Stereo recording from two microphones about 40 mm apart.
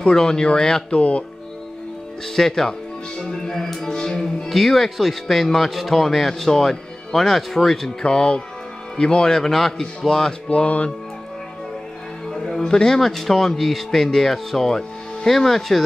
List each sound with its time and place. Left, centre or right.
0.0 s speech: centre
0.9 s speech: left
2.3 s speech: centre
4.5 s speech: centre
8.0 s speech: left
10.5 s speech: left
12.3 s speech: centre